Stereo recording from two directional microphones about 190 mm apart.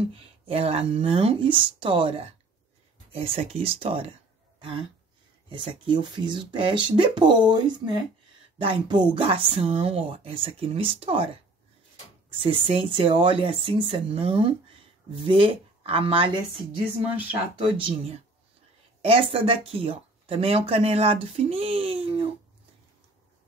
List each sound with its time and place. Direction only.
0.1 s speech: 30° right (ahead or behind)
5.5 s speech: 25° right (ahead or behind)
12.4 s speech: 30° right (ahead or behind)
17.7 s speech: 30° right (ahead or behind)